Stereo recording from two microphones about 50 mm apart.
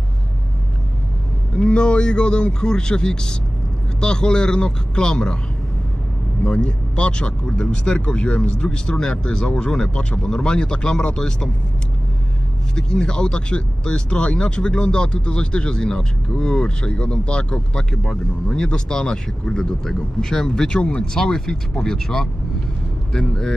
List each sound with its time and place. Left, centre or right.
1.6 s speech: left
6.4 s speech: left
12.7 s speech: centre